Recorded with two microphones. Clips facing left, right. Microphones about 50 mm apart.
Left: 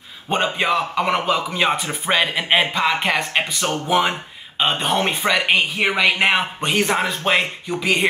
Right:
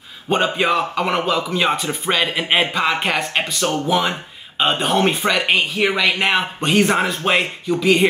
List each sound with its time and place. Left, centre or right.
0.3 s speech: centre
1.2 s speech: centre
3.4 s speech: centre
4.6 s speech: centre
7.6 s speech: centre